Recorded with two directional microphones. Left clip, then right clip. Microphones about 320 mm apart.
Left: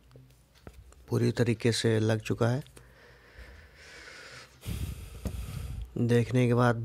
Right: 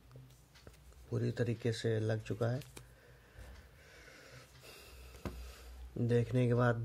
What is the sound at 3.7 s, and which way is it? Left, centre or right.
Snort, left.